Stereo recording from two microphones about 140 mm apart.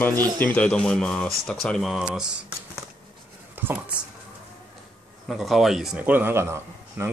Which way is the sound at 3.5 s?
15° right (ahead or behind).